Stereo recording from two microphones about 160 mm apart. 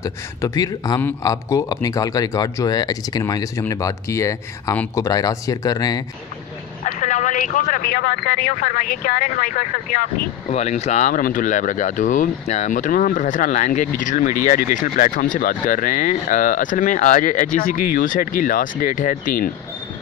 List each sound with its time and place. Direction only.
0.0 s speech: 20° left (ahead or behind)
6.8 s speech: 50° left (ahead or behind); by 8.3 s 75° left (ahead or behind)
8.3 s speech: 55° left (ahead or behind)
10.5 s speech: 45° left (ahead or behind); by 19.5 s 60° left (ahead or behind)